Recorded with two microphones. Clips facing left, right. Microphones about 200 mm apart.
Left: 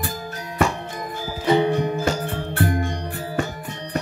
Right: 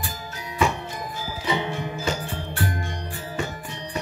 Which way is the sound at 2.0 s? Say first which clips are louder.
Left 4 dB; 60° left (ahead or behind).